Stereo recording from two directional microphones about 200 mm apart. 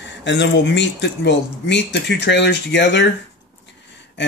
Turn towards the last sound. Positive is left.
turn(degrees=60)  # may be behind; listen again after turning